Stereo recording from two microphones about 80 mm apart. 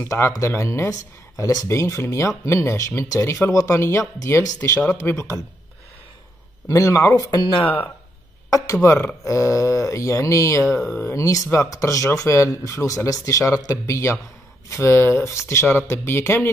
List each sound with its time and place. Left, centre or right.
0.0 s speech: left
1.7 s speech: left
6.7 s speech: left
7.2 s speech: left
7.6 s speech: left
8.5 s speech: left
10.6 s speech: centre
11.1 s speech: left
13.8 s speech: left